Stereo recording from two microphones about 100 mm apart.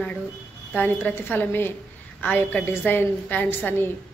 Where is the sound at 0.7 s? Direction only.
20° left (ahead or behind).